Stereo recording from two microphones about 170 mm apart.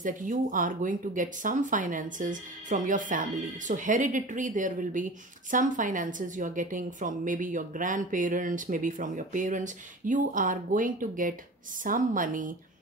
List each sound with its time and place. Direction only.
0.0 s a woman's voice: 50° right (ahead or behind)